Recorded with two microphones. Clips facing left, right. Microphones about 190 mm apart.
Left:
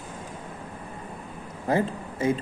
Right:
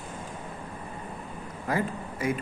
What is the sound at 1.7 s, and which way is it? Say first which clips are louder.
Speech: left 4 dB; 25° left (ahead or behind).